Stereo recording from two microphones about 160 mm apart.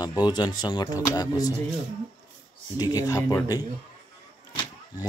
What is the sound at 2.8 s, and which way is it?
Speech, 25° left (ahead or behind).